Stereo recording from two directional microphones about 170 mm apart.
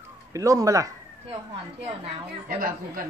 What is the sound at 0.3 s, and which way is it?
Speech, 20° right (ahead or behind).